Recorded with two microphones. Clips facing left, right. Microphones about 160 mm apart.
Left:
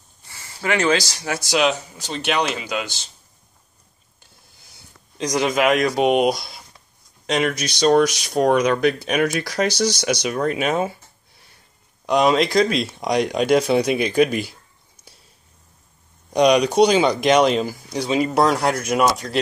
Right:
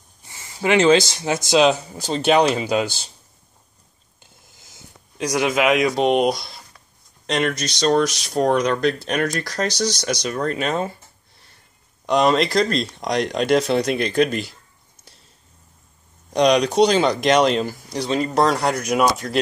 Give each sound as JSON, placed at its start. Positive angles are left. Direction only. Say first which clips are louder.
{"t": 0.2, "sound": "speech", "louder": "right 4 dB", "side_deg": -20}
{"t": 5.1, "sound": "speech", "louder": "even", "side_deg": -10}
{"t": 12.1, "sound": "speech", "louder": "even", "side_deg": 0}
{"t": 16.3, "sound": "speech", "louder": "left 1 dB", "side_deg": 5}